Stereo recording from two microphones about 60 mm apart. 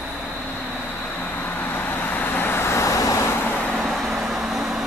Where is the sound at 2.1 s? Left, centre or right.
Left.